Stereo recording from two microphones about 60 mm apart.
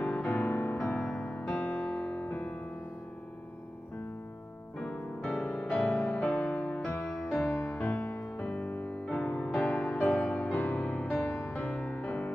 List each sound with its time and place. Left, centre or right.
0.0 s music: left
0.3 s music: left
0.7 s music: centre
4.7 s music: centre; by 6.8 s left
7.1 s music: centre
7.7 s music: left
9.0 s music: centre